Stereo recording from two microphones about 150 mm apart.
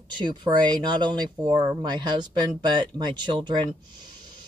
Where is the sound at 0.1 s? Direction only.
30° right (ahead or behind).